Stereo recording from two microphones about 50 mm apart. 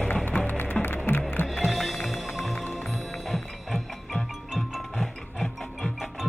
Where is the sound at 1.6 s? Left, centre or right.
Centre.